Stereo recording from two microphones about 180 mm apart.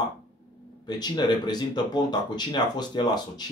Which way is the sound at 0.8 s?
25° left (ahead or behind).